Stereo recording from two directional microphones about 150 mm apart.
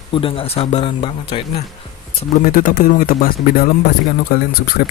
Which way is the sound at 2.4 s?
75° left (ahead or behind).